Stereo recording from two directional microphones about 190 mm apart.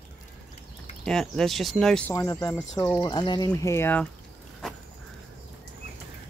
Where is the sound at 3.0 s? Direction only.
25° left (ahead or behind).